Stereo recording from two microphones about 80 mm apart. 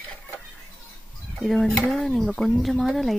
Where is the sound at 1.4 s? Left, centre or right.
Centre.